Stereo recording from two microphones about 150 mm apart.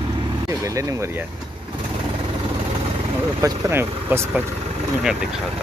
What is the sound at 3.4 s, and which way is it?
Speech, 20° right (ahead or behind).